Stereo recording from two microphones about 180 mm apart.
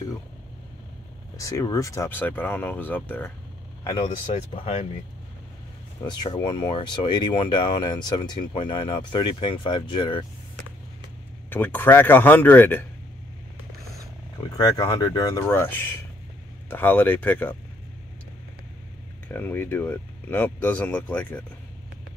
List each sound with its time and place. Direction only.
1.4 s speech: 20° left (ahead or behind)
4.3 s speech: 35° left (ahead or behind)
6.0 s speech: 25° left (ahead or behind)
11.5 s speech: 10° left (ahead or behind)
14.6 s speech: 20° left (ahead or behind)
19.2 s speech: 10° left (ahead or behind)